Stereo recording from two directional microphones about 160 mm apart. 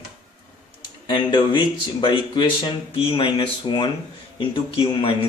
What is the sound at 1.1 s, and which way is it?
A man's voice, 30° left (ahead or behind).